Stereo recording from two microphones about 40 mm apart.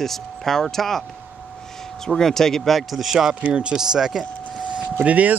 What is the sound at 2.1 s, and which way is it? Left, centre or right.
Speech, centre.